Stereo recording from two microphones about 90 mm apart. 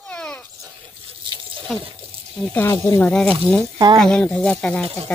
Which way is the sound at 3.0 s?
15° left (ahead or behind).